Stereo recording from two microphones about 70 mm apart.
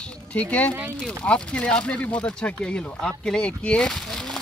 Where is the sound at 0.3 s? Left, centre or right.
Left.